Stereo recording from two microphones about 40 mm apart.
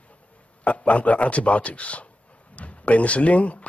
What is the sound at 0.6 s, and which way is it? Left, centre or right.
A man's voice, left.